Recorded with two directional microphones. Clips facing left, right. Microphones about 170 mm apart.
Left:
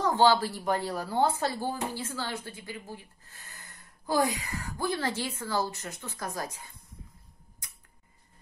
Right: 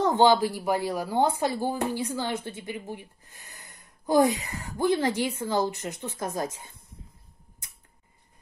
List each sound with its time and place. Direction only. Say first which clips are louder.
0.0 s speech: right 3 dB; 20° right (ahead or behind)
7.6 s tick-tock: left 1 dB; 25° right (ahead or behind)